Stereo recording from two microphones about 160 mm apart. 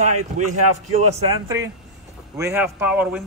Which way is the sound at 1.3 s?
20° right (ahead or behind).